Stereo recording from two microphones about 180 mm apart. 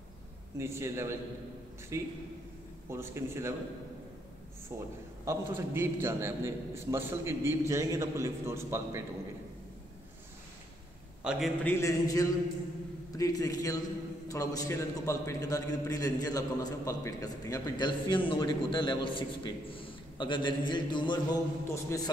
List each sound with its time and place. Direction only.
0.6 s a man's voice: 15° right (ahead or behind)
4.7 s a man's voice: 15° right (ahead or behind)
11.2 s a man's voice: centre (ahead or behind)
11.6 s a man's voice: 15° left (ahead or behind)